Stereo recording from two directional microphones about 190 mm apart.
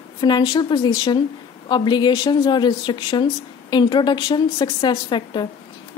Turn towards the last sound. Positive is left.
turn(degrees=25)  # may be behind; listen again after turning